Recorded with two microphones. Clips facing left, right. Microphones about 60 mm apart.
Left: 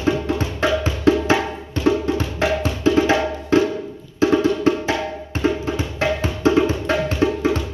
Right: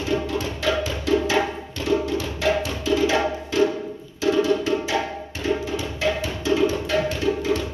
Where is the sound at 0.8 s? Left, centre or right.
Left.